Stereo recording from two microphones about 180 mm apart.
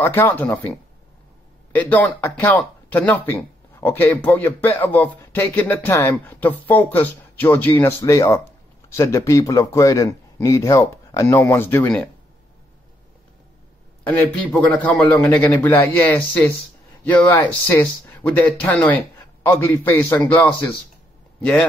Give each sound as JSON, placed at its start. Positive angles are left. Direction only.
{"t": 0.0, "sound": "a man's voice", "side_deg": 10}
{"t": 14.0, "sound": "a man's voice", "side_deg": 10}
{"t": 17.0, "sound": "a man's voice", "side_deg": 10}